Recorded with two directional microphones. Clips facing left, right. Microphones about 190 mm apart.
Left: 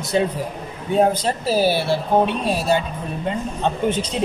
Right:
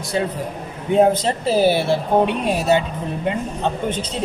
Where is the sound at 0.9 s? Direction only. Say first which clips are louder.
Right 2 dB; 25° right (ahead or behind).